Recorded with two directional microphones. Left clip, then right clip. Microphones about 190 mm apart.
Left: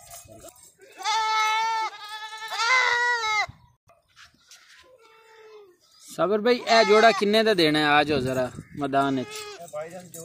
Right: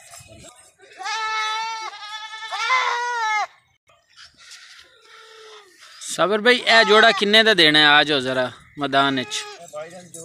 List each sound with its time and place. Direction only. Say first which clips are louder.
0.9 s goat: left 1 dB; 20° left (ahead or behind)
2.1 s goat: right 3 dB; 10° right (ahead or behind)
2.5 s goat: right 1 dB; 20° left (ahead or behind)
5.9 s a man's voice: right 4 dB; centre (ahead or behind)
9.8 s keys jangling: even; centre (ahead or behind)